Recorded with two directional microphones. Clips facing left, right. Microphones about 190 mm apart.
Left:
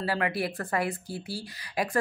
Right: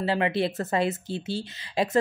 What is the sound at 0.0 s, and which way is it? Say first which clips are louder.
Speech: right 4 dB; 25° right (ahead or behind).